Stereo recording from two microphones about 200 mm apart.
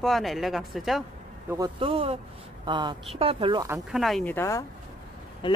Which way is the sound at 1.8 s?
30° right (ahead or behind).